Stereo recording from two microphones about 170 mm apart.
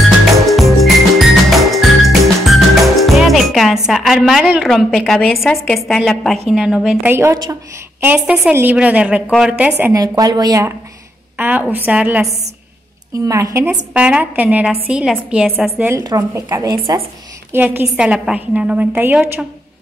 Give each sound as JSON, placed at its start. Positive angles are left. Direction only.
{"t": 0.5, "sound": "music", "side_deg": 0}
{"t": 6.5, "sound": "a woman's voice", "side_deg": -5}
{"t": 7.1, "sound": "a woman's voice", "side_deg": -15}
{"t": 8.0, "sound": "a woman's voice", "side_deg": -10}
{"t": 9.9, "sound": "a woman's voice", "side_deg": -20}
{"t": 11.3, "sound": "a woman's voice", "side_deg": -10}
{"t": 13.2, "sound": "a woman's voice", "side_deg": -20}